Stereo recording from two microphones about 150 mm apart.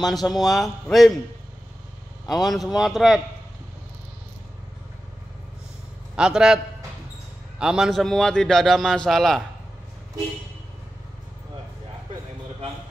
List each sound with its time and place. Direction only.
0.0 s a man's voice: centre (ahead or behind)
2.2 s a man's voice: centre (ahead or behind)
6.1 s a man's voice: 5° right (ahead or behind)